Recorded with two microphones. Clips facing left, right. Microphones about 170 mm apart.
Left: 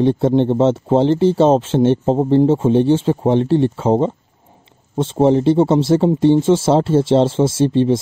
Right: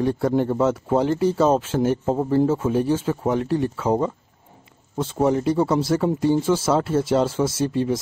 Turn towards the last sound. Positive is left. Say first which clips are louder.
# left 7 dB
turn(degrees=25)  # may be behind; listen again after turning